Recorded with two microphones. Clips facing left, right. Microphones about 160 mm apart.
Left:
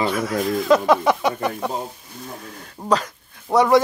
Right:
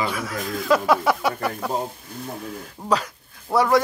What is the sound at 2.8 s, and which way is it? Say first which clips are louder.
Speech: left 2 dB; 10° right (ahead or behind).